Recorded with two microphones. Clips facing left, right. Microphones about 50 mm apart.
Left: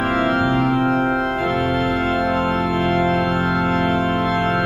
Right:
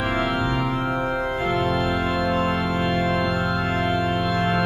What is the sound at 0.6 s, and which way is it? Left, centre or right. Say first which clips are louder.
Organ: left 6 dB; centre.